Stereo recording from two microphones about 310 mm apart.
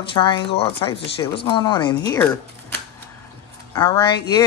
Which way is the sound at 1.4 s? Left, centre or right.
Centre.